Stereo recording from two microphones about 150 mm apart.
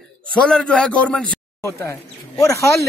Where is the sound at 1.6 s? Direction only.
20° left (ahead or behind).